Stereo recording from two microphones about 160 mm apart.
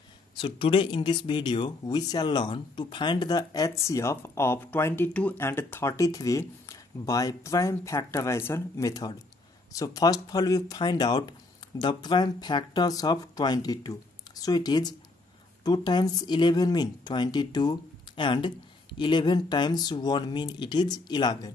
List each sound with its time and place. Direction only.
0.6 s speech: 30° left (ahead or behind)